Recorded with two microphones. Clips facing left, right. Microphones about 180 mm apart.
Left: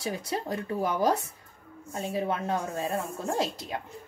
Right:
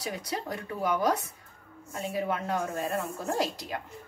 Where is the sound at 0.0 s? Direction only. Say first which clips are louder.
Left 2 dB; 25° left (ahead or behind).